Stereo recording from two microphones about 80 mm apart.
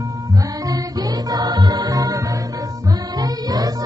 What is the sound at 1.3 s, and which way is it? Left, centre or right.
Music, right.